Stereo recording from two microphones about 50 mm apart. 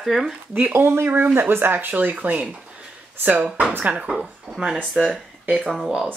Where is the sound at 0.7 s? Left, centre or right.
Right.